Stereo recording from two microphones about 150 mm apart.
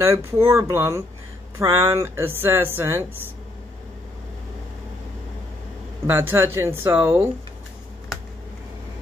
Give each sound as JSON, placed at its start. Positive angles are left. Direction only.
{"t": 0.0, "sound": "speech", "side_deg": -20}
{"t": 6.0, "sound": "speech", "side_deg": -15}